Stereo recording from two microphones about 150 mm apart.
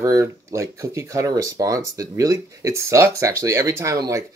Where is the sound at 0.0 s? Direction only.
20° right (ahead or behind).